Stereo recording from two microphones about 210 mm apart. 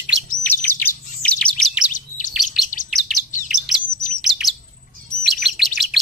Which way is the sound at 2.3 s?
Centre (ahead or behind).